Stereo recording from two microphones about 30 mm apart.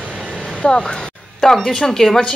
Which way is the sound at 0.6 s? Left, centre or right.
Left.